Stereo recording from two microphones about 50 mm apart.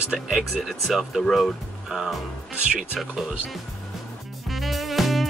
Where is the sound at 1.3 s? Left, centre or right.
Centre.